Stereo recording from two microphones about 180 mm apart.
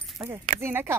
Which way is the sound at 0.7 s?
10° right (ahead or behind).